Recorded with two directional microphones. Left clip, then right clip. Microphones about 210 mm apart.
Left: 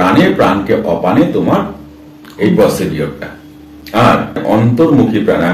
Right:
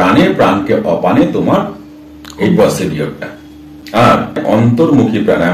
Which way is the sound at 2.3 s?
Centre (ahead or behind).